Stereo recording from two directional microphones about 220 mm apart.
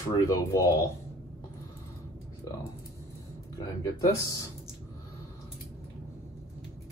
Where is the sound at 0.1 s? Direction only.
15° left (ahead or behind).